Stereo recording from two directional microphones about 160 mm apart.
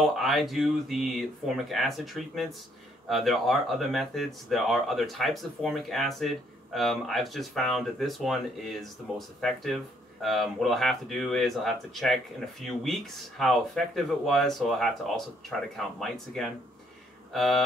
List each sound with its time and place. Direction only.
0.0 s speech: centre (ahead or behind)